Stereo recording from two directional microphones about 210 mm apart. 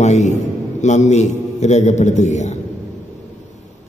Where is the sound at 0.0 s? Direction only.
35° left (ahead or behind).